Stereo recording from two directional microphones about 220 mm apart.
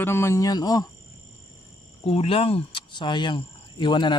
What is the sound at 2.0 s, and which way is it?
Speech, 25° left (ahead or behind).